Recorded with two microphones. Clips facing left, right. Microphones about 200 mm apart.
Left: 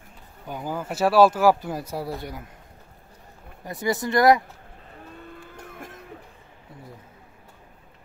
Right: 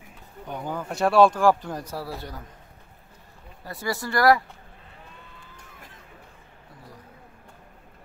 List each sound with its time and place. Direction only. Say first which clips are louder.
0.5 s a man's voice: left 1 dB; 5° left (ahead or behind)
3.6 s speech: left 4 dB; 20° left (ahead or behind)
5.3 s music: left 8 dB; 50° left (ahead or behind)